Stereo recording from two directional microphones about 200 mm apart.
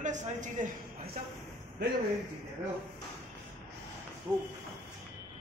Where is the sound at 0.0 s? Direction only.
40° right (ahead or behind).